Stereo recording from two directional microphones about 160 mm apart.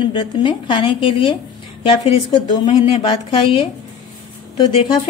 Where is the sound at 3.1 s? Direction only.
30° left (ahead or behind).